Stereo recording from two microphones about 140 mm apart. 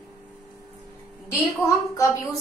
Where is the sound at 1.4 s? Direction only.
25° left (ahead or behind).